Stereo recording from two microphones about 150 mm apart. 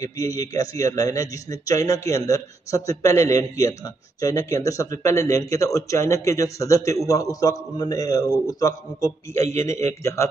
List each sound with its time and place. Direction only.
0.0 s a man's voice: 25° left (ahead or behind)